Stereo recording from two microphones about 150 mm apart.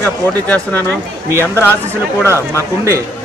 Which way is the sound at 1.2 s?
15° right (ahead or behind).